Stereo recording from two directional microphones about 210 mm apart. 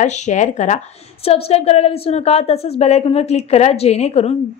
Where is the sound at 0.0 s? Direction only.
35° left (ahead or behind).